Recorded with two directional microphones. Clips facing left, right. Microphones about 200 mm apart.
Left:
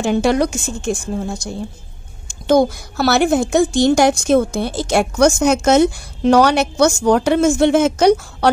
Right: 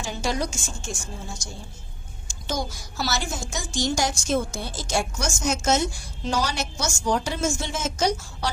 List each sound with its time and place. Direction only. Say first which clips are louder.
0.0 s a woman's voice: left 12 dB; 65° left (ahead or behind)